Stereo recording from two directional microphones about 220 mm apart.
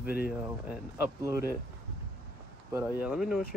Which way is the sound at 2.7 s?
10° right (ahead or behind).